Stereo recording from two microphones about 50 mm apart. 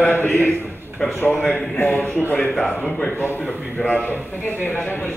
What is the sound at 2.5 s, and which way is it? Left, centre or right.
Speech, centre.